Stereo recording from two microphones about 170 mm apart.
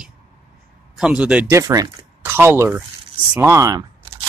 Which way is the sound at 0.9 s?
5° right (ahead or behind).